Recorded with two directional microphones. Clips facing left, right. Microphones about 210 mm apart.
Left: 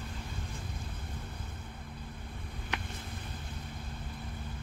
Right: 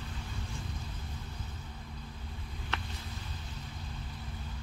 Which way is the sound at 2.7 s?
15° left (ahead or behind).